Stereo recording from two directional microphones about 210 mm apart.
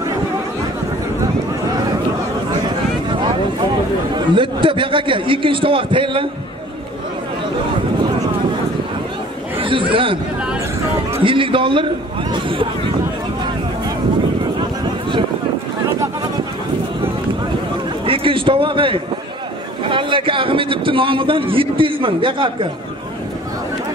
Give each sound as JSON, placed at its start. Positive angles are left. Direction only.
{"t": 3.1, "sound": "a sound", "side_deg": -25}
{"t": 4.1, "sound": "a man's voice", "side_deg": -25}
{"t": 9.6, "sound": "chatter", "side_deg": -25}
{"t": 11.2, "sound": "a man's voice", "side_deg": -25}
{"t": 18.0, "sound": "a man's voice", "side_deg": -25}